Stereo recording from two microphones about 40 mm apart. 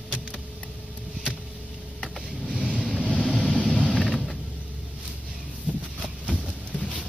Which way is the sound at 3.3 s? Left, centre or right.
Left.